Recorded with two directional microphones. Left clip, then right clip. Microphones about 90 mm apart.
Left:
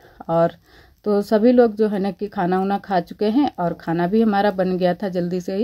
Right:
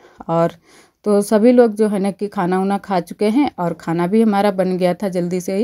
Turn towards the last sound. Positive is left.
turn(degrees=-40)  # may be behind; listen again after turning